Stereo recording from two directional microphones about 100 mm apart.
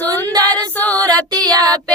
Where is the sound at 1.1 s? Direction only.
10° left (ahead or behind).